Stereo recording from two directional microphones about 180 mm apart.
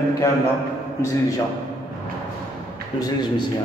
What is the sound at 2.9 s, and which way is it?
Speech, 30° left (ahead or behind).